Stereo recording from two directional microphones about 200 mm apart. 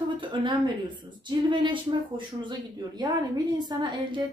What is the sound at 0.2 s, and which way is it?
A woman's voice, 25° right (ahead or behind).